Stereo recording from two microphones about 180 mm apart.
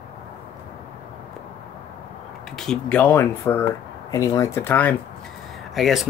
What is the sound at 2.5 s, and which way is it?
Speech, 5° left (ahead or behind).